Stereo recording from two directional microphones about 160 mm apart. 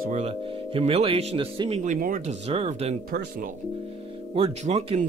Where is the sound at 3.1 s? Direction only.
60° right (ahead or behind).